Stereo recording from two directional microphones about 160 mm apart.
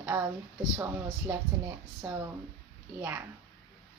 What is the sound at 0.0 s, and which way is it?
Speech, 15° right (ahead or behind).